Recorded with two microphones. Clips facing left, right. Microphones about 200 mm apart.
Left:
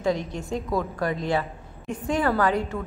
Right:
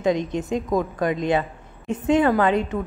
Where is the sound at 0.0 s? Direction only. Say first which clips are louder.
Right 4 dB; 20° right (ahead or behind).